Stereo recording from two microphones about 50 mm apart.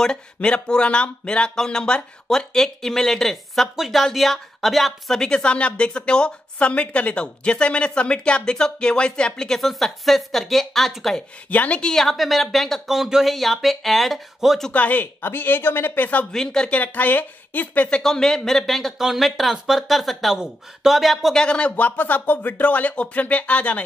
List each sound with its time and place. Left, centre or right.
0.0 s speech: centre
3.6 s speech: centre
5.2 s a woman's voice: centre
9.6 s speech: centre
11.5 s a woman's voice: left
11.8 s speech: centre
14.7 s speech: left
15.2 s speech: left
16.3 s speech: centre
16.7 s speech: left
18.0 s speech: centre
21.4 s a woman's voice: left